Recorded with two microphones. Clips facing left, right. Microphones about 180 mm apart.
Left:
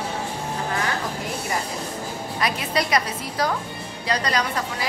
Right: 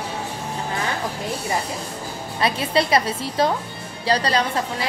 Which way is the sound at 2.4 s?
30° right (ahead or behind).